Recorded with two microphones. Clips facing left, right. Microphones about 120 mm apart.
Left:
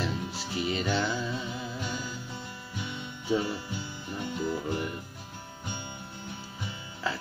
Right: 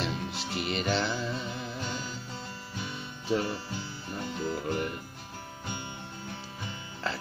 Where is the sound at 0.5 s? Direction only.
70° right (ahead or behind).